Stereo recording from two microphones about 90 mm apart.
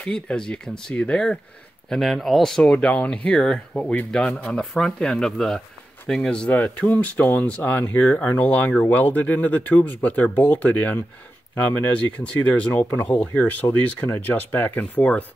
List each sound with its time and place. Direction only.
0.0 s speech: 10° left (ahead or behind)